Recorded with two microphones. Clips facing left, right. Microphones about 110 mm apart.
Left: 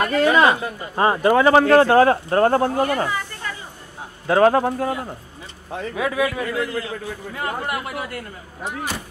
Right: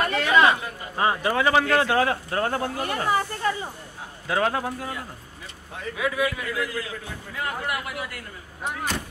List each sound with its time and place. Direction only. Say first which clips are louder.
0.1 s speech: left 4 dB; 40° left (ahead or behind)
4.3 s speech: left 9 dB; 45° left (ahead or behind)
5.9 s a man's voice: left 4 dB; 45° left (ahead or behind)
8.6 s speech: left 1 dB; 5° left (ahead or behind)